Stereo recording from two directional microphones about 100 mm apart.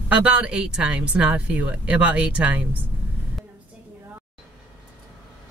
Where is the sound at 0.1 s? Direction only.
10° right (ahead or behind).